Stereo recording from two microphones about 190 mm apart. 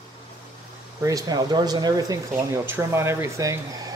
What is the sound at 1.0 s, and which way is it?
Speech, 20° right (ahead or behind).